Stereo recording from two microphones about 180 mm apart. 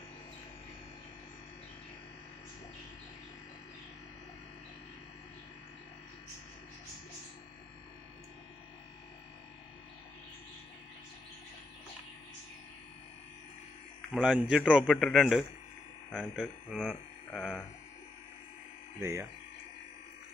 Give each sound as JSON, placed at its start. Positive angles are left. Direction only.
{"t": 14.1, "sound": "a man's voice", "side_deg": 0}
{"t": 18.9, "sound": "speech", "side_deg": -15}